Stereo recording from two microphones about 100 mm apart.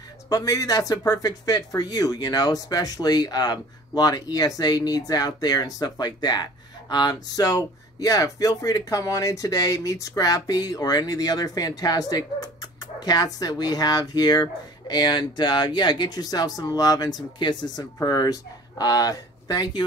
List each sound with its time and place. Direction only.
0.3 s speech: 35° left (ahead or behind)